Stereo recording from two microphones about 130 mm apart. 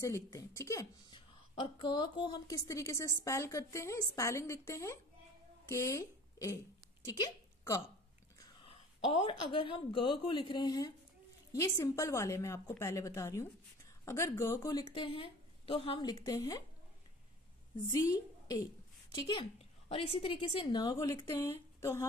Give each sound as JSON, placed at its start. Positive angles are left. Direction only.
{"t": 0.0, "sound": "a woman's voice", "side_deg": 25}
{"t": 1.1, "sound": "a woman's voice", "side_deg": 40}
{"t": 8.4, "sound": "a sound", "side_deg": 40}
{"t": 9.5, "sound": "a woman's voice", "side_deg": 40}
{"t": 17.9, "sound": "a woman's voice", "side_deg": 25}
{"t": 19.1, "sound": "a woman's voice", "side_deg": 40}